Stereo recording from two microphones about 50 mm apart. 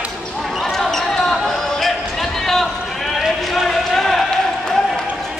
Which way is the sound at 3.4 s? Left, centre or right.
Centre.